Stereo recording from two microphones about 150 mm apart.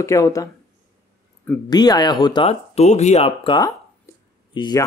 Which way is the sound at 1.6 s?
25° left (ahead or behind).